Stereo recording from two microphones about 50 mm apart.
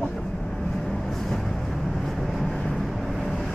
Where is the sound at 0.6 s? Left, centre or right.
Centre.